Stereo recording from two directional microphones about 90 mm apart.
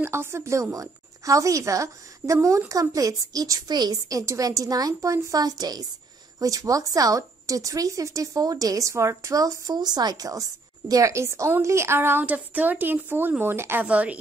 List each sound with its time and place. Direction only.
0.0 s a woman's voice: 30° right (ahead or behind)
13.8 s a woman's voice: 15° right (ahead or behind)